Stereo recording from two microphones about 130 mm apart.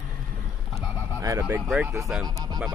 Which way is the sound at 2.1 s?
5° right (ahead or behind).